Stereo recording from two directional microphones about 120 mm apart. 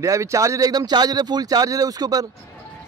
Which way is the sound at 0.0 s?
25° right (ahead or behind).